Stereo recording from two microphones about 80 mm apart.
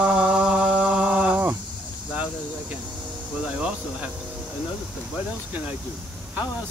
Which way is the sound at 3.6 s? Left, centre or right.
Centre.